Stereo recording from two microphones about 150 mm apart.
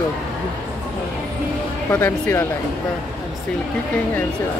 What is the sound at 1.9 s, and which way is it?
Speech, 15° left (ahead or behind).